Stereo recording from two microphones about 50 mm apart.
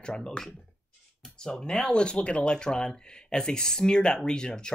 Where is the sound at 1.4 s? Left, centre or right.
Centre.